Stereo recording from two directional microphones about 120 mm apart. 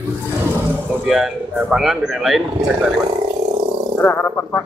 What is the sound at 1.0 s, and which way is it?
A man's voice, 5° right (ahead or behind).